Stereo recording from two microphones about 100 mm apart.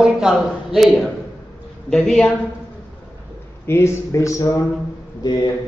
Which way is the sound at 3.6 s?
25° left (ahead or behind).